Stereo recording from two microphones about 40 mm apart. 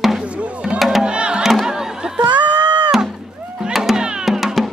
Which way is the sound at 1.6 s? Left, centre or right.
Centre.